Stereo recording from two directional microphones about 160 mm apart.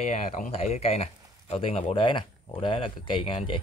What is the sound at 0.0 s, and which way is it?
Speech, 45° left (ahead or behind).